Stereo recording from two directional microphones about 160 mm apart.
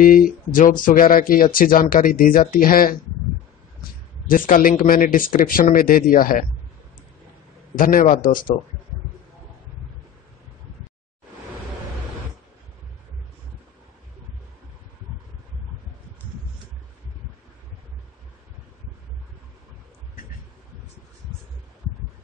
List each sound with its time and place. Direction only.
0.0 s speech: 60° left (ahead or behind)
4.3 s speech: 60° left (ahead or behind)
7.7 s speech: 60° left (ahead or behind)